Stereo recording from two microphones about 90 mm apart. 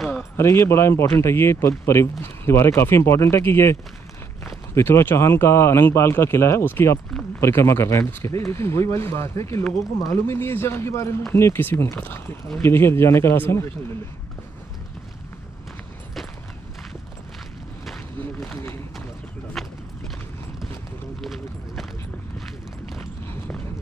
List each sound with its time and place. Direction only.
0.4 s speech: 35° left (ahead or behind)
19.6 s horse: centre (ahead or behind)
21.2 s clip-clop: centre (ahead or behind)